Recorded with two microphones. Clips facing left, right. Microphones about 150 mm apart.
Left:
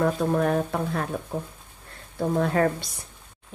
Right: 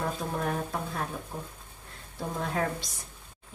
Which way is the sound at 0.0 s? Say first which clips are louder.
Left 9 dB; 65° left (ahead or behind).